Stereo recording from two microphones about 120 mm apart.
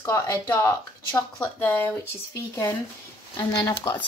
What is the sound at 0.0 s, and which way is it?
Speech, 25° left (ahead or behind).